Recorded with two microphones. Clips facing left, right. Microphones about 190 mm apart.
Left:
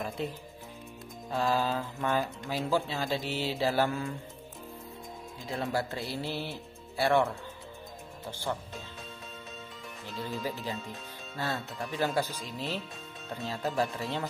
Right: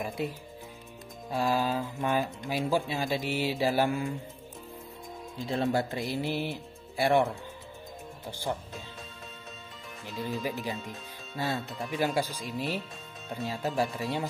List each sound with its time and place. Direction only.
0.2 s speech: 10° right (ahead or behind)
5.5 s speech: 25° right (ahead or behind)
8.3 s speech: 15° right (ahead or behind)
10.4 s speech: 15° right (ahead or behind)